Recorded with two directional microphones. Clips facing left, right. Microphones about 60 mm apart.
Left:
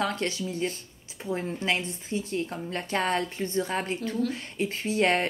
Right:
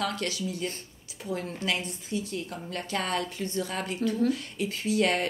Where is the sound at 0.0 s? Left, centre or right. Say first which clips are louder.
Left 2 dB; left.